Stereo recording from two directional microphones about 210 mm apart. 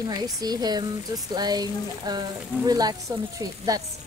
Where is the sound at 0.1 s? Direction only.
20° right (ahead or behind).